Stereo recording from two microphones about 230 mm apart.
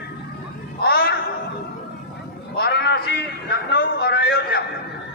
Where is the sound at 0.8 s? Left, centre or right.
Left.